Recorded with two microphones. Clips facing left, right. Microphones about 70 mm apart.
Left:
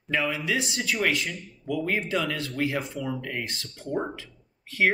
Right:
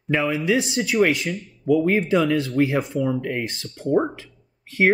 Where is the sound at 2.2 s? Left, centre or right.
Centre.